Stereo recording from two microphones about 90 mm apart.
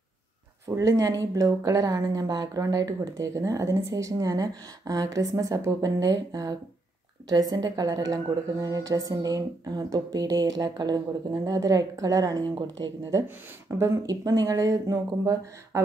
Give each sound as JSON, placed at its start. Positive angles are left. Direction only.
{"t": 0.7, "sound": "a woman's voice", "side_deg": -35}
{"t": 13.7, "sound": "a woman's voice", "side_deg": -30}